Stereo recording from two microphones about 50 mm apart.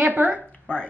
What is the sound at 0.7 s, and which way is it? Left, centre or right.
Speech, left.